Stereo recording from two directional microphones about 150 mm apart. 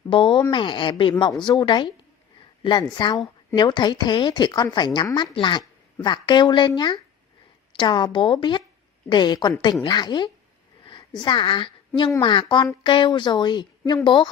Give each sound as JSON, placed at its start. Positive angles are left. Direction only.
{"t": 0.1, "sound": "a woman's voice", "side_deg": 30}